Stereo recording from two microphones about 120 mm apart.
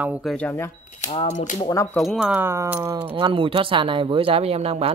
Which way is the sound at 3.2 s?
45° right (ahead or behind).